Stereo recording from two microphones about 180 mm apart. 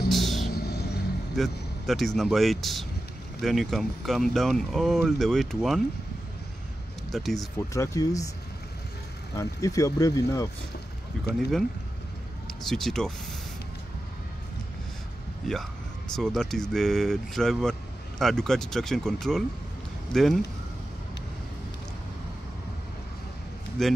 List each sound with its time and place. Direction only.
0.1 s vehicle: centre (ahead or behind)
0.5 s music: 60° left (ahead or behind)
1.3 s speech: centre (ahead or behind)
7.1 s speech: centre (ahead or behind)
7.3 s speech: 15° left (ahead or behind)
9.4 s speech: 20° left (ahead or behind)
12.6 s speech: centre (ahead or behind)
15.4 s speech: centre (ahead or behind)
23.8 s speech: centre (ahead or behind)